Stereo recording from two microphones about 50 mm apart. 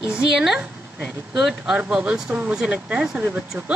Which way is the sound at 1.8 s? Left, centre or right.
Right.